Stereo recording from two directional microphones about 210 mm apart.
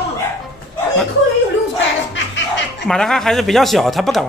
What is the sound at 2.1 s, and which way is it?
Music, 60° left (ahead or behind).